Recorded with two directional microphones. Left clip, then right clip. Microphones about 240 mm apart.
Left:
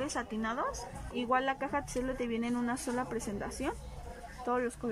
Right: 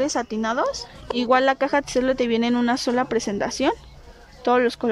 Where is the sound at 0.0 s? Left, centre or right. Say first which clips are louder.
Right 12 dB; right.